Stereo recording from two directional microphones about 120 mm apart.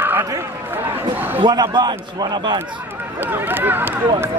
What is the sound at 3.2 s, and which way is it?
Speech, 15° right (ahead or behind).